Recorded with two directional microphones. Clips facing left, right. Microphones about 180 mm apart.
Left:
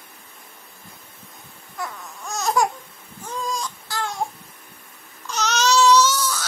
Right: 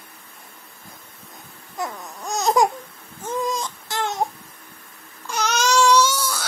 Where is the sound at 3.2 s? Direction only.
20° right (ahead or behind).